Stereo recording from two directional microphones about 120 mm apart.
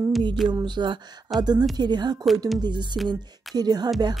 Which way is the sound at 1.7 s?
35° right (ahead or behind).